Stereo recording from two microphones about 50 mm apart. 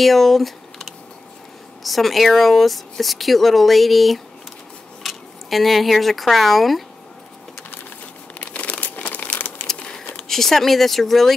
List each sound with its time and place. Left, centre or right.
0.0 s speech: centre
8.4 s crumpling: left
10.1 s speech: centre